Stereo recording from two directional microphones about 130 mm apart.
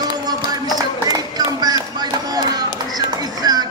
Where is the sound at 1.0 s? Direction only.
30° right (ahead or behind).